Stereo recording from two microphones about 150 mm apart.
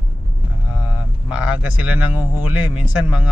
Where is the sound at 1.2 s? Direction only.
5° right (ahead or behind).